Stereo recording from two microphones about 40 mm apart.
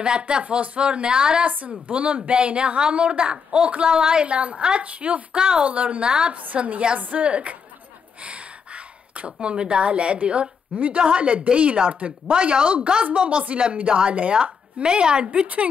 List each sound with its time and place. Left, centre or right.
0.3 s a woman's voice: right
6.0 s a woman's voice: right
6.3 s a woman's voice: right
15.4 s a woman's voice: right